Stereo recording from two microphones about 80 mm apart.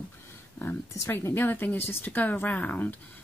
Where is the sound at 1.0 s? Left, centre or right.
Left.